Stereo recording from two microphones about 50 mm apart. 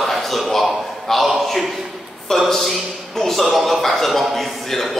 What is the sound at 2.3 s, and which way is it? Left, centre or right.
A man's voice, centre.